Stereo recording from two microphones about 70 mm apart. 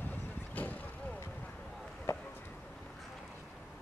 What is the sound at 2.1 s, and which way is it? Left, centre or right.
Chop, left.